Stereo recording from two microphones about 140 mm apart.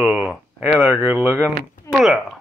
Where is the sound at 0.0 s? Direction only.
10° right (ahead or behind).